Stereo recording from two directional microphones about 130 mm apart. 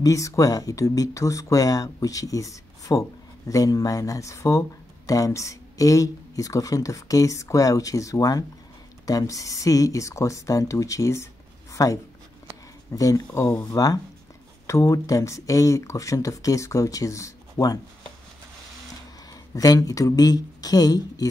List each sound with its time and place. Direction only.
0.0 s speech: 25° left (ahead or behind)
19.5 s speech: 30° left (ahead or behind)